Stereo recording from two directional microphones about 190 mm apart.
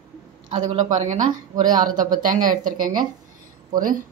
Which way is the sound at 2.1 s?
45° right (ahead or behind).